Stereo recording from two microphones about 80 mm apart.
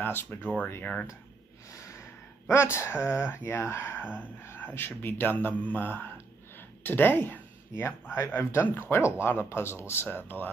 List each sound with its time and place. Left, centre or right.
0.0 s speech: left
1.7 s speech: left